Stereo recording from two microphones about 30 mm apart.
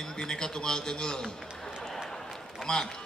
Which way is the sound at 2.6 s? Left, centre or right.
Centre.